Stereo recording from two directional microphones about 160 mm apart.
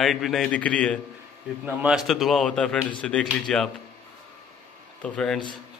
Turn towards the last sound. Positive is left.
turn(degrees=5)  # may be behind; listen again after turning